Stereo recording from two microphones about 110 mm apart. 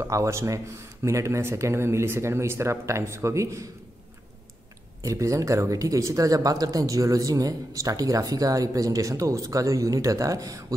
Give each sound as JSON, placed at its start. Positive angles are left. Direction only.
{"t": 0.0, "sound": "speech", "side_deg": -30}
{"t": 5.0, "sound": "speech", "side_deg": -30}